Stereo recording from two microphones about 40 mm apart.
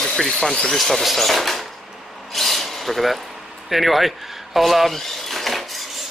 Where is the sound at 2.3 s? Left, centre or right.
Centre.